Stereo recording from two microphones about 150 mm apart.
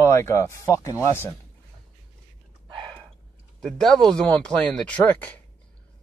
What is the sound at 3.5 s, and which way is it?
Speech, 5° left (ahead or behind).